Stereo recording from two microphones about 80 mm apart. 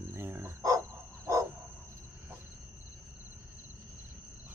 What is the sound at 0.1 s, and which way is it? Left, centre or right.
Dog, right.